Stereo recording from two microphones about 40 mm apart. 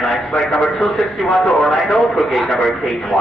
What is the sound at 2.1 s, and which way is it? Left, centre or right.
Speech, centre.